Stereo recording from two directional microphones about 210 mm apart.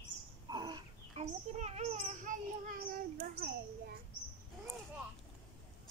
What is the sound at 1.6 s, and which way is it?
Child singing, 30° right (ahead or behind).